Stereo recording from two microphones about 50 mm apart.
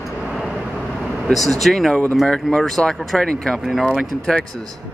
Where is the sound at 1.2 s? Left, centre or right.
Centre.